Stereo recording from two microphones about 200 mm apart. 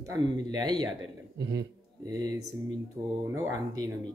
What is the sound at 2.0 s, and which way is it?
Speech, 20° right (ahead or behind).